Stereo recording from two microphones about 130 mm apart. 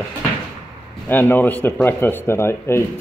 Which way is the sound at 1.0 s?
15° left (ahead or behind).